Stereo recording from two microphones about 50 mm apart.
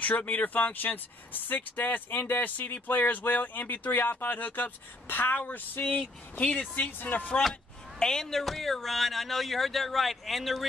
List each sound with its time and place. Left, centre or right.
0.0 s speech: left
6.3 s speech: left
6.7 s speech: left
8.0 s speech: centre